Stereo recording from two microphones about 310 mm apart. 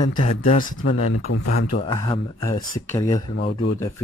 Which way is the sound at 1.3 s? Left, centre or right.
Left.